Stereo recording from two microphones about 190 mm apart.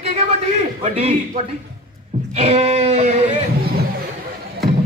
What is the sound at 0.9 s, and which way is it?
Speech, 30° right (ahead or behind).